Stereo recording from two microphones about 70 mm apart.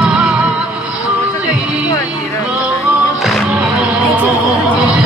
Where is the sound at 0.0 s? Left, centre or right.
Centre.